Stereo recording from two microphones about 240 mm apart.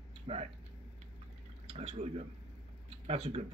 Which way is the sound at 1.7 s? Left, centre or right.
Right.